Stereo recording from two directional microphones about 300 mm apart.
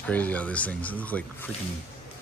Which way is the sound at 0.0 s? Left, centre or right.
Centre.